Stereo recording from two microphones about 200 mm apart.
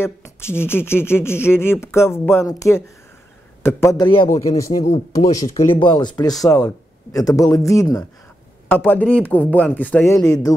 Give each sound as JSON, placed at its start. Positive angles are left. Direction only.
{"t": 0.0, "sound": "speech", "side_deg": 10}